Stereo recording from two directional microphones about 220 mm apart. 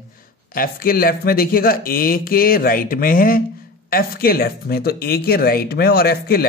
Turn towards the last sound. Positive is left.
turn(degrees=45)  # may be behind; listen again after turning